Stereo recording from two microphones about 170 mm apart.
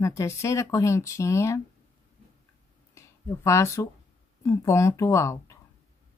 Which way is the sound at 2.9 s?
15° left (ahead or behind).